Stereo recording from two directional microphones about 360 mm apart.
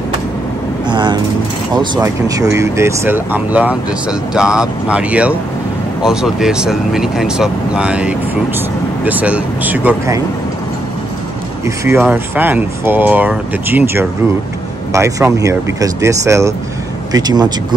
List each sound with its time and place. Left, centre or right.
0.8 s speech: centre
11.6 s speech: centre